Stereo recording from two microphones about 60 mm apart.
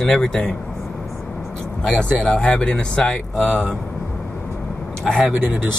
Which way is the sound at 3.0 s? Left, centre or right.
Centre.